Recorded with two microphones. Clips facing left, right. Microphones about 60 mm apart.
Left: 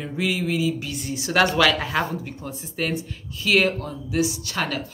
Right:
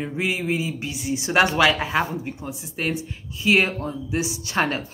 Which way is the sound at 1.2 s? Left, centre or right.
Right.